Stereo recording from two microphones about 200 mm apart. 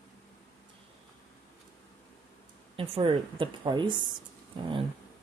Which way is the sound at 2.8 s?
25° right (ahead or behind).